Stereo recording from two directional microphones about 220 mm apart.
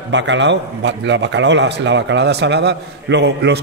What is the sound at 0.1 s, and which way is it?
A man's voice, 55° right (ahead or behind).